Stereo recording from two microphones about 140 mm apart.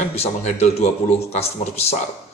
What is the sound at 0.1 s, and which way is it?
A man's voice, 50° left (ahead or behind).